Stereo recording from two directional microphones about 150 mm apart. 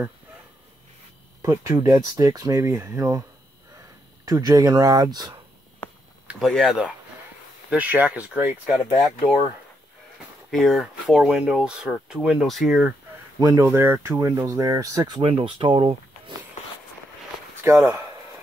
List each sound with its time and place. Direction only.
1.4 s speech: 20° right (ahead or behind)
4.3 s speech: 25° right (ahead or behind)
6.2 s speech: centre (ahead or behind)
10.5 s speech: centre (ahead or behind)
13.4 s speech: 20° right (ahead or behind)
17.6 s speech: 20° right (ahead or behind)